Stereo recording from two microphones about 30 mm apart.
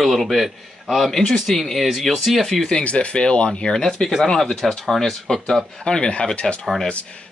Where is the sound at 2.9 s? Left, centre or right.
Left.